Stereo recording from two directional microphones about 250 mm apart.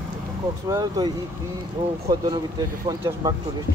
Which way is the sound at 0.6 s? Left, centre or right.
Centre.